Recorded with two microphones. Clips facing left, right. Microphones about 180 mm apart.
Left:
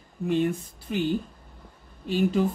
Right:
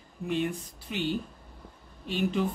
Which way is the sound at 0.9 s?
45° left (ahead or behind).